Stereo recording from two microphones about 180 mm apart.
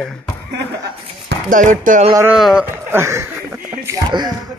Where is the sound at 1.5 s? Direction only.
45° right (ahead or behind).